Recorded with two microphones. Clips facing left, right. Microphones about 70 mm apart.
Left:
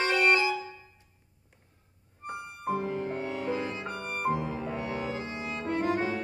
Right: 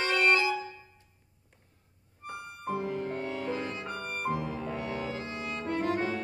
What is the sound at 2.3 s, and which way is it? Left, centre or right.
Music, centre.